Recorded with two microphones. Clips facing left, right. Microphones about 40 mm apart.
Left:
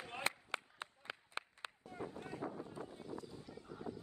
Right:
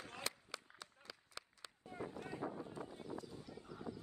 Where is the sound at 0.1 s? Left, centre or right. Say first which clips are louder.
Left 8 dB; left.